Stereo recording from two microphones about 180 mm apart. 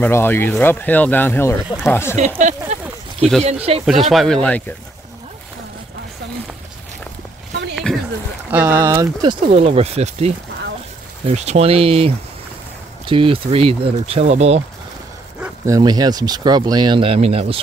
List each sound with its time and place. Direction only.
0.0 s speech: 10° left (ahead or behind)
2.1 s a sound: 40° right (ahead or behind)
3.8 s speech: centre (ahead or behind)
7.7 s a sound: centre (ahead or behind)
8.5 s speech: 10° right (ahead or behind); by 14.6 s 40° right (ahead or behind)
15.4 s speech: 15° right (ahead or behind); by 17.6 s 35° right (ahead or behind)